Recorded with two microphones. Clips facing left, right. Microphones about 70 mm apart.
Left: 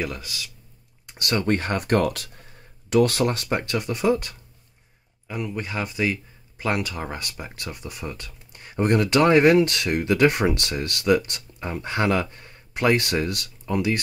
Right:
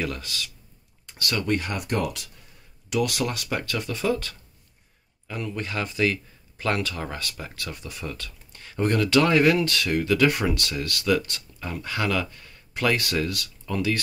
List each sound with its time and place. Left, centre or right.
0.0 s speech: centre
1.0 s speech: left